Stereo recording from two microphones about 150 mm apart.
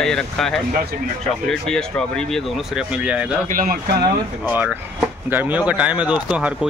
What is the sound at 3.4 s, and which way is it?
Speech, 70° right (ahead or behind).